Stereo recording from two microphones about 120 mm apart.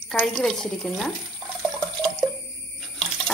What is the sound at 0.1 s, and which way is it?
A woman's voice, centre (ahead or behind).